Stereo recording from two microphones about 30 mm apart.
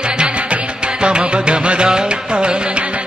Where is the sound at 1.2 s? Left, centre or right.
Right.